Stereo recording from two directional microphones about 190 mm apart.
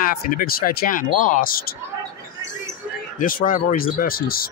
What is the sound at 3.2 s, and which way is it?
Speech, 45° left (ahead or behind).